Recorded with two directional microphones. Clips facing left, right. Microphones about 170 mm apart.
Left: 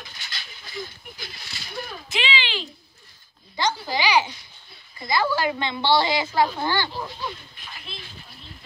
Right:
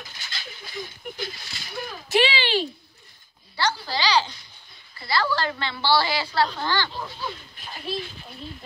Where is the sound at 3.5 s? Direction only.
15° left (ahead or behind).